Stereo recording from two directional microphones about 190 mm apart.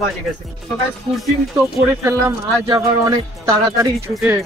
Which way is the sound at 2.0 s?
15° right (ahead or behind).